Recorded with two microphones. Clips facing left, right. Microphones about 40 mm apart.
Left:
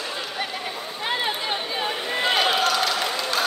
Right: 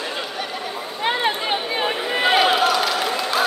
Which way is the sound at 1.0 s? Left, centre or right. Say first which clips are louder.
Right 5 dB; right.